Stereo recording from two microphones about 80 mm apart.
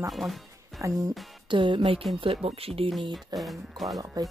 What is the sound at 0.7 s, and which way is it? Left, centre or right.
Speech, right.